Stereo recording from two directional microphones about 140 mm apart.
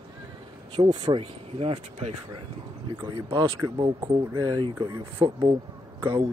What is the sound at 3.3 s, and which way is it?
Speech, 30° right (ahead or behind).